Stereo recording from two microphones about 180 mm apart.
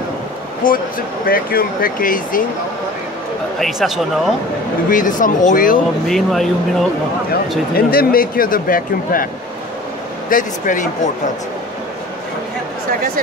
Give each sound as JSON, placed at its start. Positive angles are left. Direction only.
{"t": 0.6, "sound": "speech", "side_deg": 50}
{"t": 3.5, "sound": "speech", "side_deg": 0}
{"t": 4.8, "sound": "speech", "side_deg": 50}
{"t": 6.0, "sound": "speech", "side_deg": 0}
{"t": 7.7, "sound": "speech", "side_deg": 55}
{"t": 10.3, "sound": "speech", "side_deg": 45}